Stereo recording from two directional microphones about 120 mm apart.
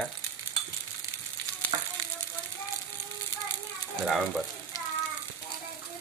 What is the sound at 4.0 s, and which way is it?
Speech, centre (ahead or behind).